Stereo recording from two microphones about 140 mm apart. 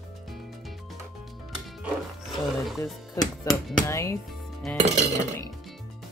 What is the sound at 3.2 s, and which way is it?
Speech, 20° left (ahead or behind).